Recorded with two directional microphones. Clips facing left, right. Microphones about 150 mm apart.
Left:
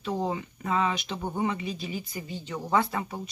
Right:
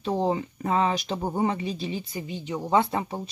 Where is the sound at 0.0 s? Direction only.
30° right (ahead or behind).